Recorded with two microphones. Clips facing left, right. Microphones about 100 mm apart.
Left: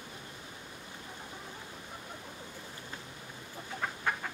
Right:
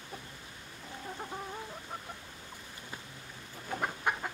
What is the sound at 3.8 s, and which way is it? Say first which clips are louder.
Chicken: right 1 dB; 15° right (ahead or behind).